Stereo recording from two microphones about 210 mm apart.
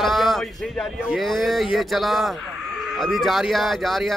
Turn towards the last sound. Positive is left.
turn(degrees=0)  # may be behind; listen again after turning